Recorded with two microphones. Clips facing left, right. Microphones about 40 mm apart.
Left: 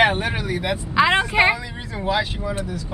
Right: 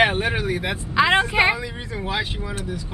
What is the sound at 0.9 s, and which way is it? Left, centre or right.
Speech, centre.